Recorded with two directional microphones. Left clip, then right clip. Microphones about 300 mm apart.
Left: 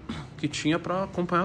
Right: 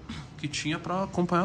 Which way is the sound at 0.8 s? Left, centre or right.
Right.